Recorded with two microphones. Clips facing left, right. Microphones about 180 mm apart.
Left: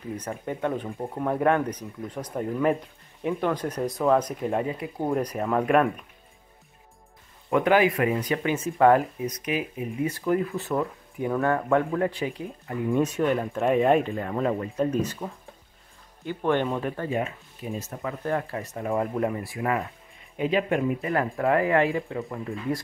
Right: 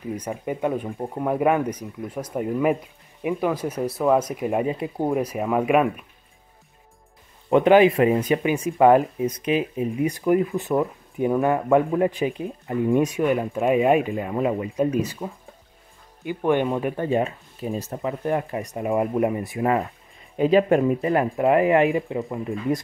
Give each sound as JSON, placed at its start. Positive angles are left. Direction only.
{"t": 0.1, "sound": "speech", "side_deg": -10}
{"t": 4.7, "sound": "speech", "side_deg": -25}
{"t": 5.1, "sound": "speech", "side_deg": -5}
{"t": 7.4, "sound": "speech", "side_deg": -20}
{"t": 17.1, "sound": "speech", "side_deg": -35}
{"t": 18.0, "sound": "speech", "side_deg": -20}
{"t": 20.3, "sound": "speech", "side_deg": -35}
{"t": 21.1, "sound": "speech", "side_deg": -20}